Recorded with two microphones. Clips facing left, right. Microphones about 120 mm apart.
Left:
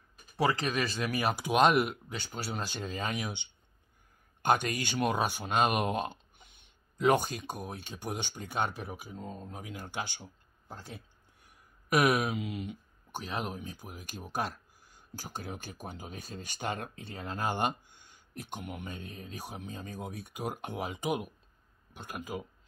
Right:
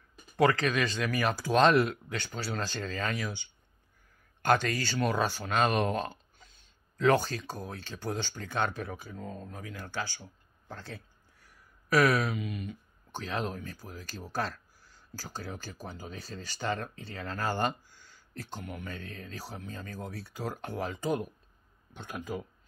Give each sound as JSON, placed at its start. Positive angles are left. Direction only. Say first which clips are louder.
{"t": 0.7, "sound": "speech", "louder": "right 2 dB", "side_deg": 5}
{"t": 13.1, "sound": "speech", "louder": "right 2 dB", "side_deg": 10}